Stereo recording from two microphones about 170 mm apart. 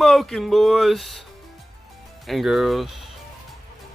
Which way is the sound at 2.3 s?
Centre (ahead or behind).